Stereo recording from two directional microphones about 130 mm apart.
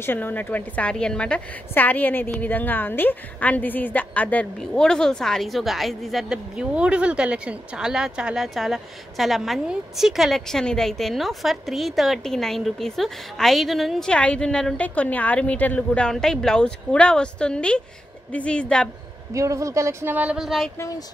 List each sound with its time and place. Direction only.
0.0 s a woman's voice: 15° left (ahead or behind)
19.3 s speech: 25° right (ahead or behind); by 20.7 s centre (ahead or behind)